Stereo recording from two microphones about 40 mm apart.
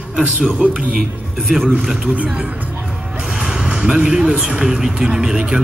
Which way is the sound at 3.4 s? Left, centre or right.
Right.